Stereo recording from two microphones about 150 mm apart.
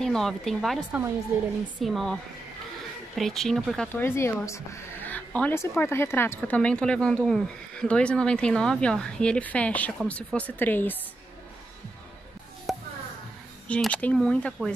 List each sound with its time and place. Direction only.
0.0 s a woman's voice: 5° left (ahead or behind)
3.2 s a woman's voice: centre (ahead or behind)
3.9 s speech: 15° left (ahead or behind)
12.7 s a sound: centre (ahead or behind)
13.7 s a woman's voice: 5° left (ahead or behind)